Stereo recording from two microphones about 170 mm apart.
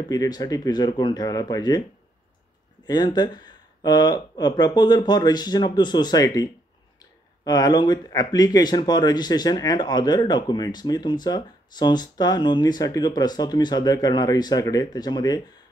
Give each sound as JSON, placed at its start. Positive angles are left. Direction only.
{"t": 0.1, "sound": "speech", "side_deg": 20}
{"t": 2.9, "sound": "speech", "side_deg": 25}